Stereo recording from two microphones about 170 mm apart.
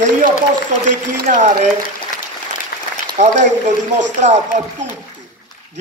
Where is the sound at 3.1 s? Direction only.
45° right (ahead or behind).